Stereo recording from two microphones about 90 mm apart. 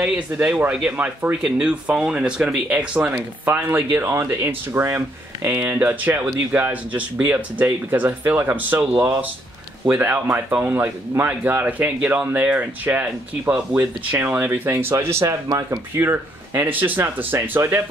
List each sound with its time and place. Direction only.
0.0 s speech: 10° right (ahead or behind)
0.9 s speech: 20° right (ahead or behind)
1.4 s speech: 10° right (ahead or behind); by 5.5 s 25° right (ahead or behind)
5.5 s speech: 15° right (ahead or behind)
15.4 s speech: 50° right (ahead or behind)
16.0 s speech: 25° right (ahead or behind)